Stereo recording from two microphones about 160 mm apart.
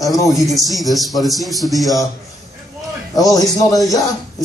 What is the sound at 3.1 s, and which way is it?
Speech, 20° left (ahead or behind).